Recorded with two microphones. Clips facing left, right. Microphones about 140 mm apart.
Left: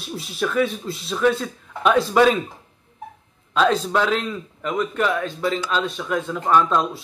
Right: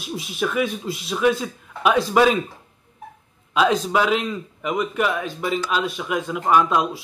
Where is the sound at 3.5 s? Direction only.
10° right (ahead or behind).